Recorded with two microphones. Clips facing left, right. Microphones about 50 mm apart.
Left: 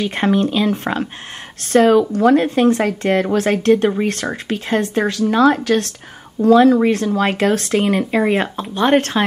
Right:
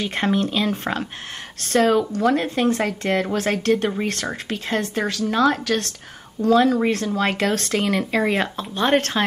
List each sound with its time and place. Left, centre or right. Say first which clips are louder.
0.0 s speech: left 5 dB; centre
1.7 s a woman's voice: left 6 dB; left; by 9.2 s centre